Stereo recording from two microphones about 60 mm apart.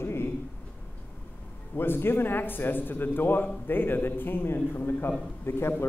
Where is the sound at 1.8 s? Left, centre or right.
Left.